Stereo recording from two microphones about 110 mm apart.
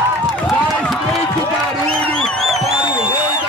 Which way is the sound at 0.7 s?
5° left (ahead or behind).